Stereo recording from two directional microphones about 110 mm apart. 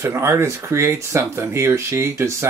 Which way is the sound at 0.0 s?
25° right (ahead or behind).